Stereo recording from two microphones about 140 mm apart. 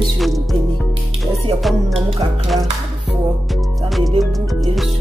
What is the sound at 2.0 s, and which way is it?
Music, 40° right (ahead or behind).